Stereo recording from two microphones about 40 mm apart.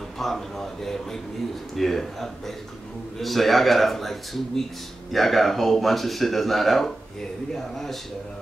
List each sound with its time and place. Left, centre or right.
0.2 s a man's voice: centre